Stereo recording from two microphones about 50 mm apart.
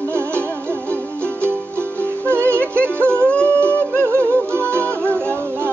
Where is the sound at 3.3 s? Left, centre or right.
Left.